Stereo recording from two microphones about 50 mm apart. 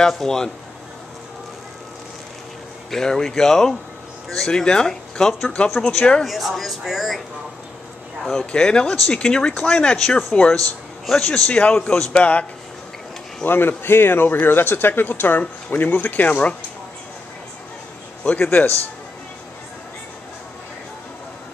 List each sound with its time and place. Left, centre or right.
0.2 s speech: centre
2.9 s a man's voice: centre
6.2 s speech: centre
8.2 s a man's voice: centre
13.5 s speech: left
18.4 s speech: left